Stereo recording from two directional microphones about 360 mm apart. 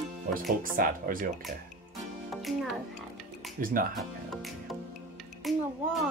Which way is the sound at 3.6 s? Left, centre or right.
Right.